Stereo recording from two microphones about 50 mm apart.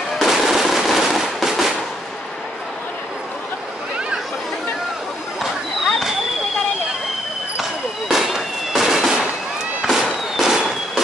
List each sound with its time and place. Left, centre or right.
0.2 s fireworks: centre
8.1 s fireworks: centre